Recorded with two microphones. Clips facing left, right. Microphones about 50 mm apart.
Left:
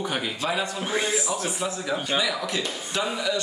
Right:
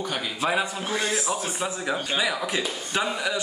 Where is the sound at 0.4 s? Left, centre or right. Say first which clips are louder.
Right 2 dB; centre.